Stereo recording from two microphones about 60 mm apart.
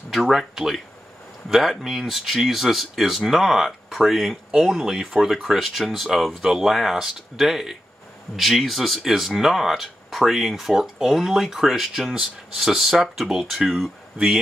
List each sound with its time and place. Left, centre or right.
0.1 s speech: centre
14.1 s speech: centre